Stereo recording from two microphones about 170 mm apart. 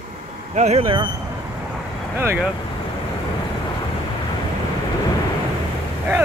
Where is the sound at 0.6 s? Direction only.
40° right (ahead or behind).